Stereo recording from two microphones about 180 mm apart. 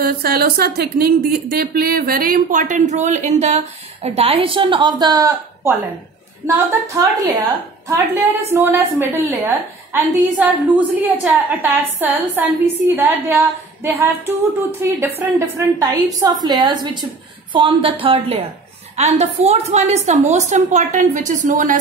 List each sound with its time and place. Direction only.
0.0 s a woman's voice: 60° right (ahead or behind)